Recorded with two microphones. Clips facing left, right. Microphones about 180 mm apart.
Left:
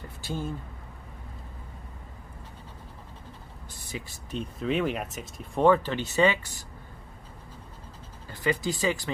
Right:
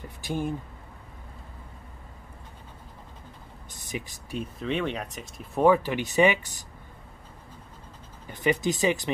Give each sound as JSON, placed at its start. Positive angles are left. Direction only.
{"t": 0.2, "sound": "speech", "side_deg": -15}
{"t": 3.7, "sound": "speech", "side_deg": -20}
{"t": 4.6, "sound": "speech", "side_deg": 5}
{"t": 8.3, "sound": "speech", "side_deg": -20}